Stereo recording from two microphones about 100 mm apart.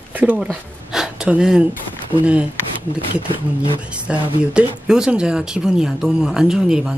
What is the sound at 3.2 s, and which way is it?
Speech, 65° left (ahead or behind).